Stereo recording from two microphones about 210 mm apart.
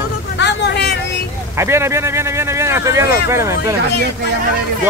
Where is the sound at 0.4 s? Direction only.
55° left (ahead or behind).